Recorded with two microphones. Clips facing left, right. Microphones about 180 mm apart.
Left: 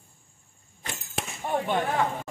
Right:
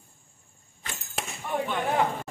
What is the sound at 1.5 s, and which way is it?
Chop, 40° left (ahead or behind).